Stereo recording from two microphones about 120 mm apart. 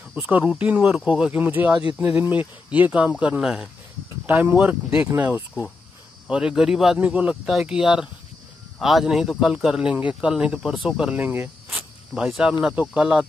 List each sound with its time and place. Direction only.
0.1 s speech: 10° right (ahead or behind)
6.2 s speech: 5° right (ahead or behind)
12.1 s speech: centre (ahead or behind)